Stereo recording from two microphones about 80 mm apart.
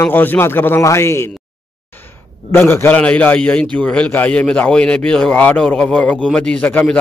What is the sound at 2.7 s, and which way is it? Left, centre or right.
A man's voice, left.